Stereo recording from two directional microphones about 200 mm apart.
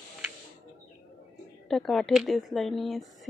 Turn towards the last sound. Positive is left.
turn(degrees=0)  # may be behind; listen again after turning